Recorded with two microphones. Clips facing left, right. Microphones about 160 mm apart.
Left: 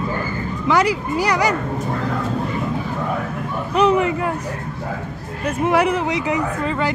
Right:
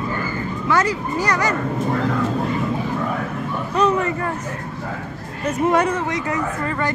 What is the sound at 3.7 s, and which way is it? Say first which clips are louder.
Speech: left 3 dB; 15° left (ahead or behind).